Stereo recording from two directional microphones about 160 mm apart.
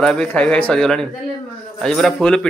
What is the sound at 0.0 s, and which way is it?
Speech, 5° left (ahead or behind).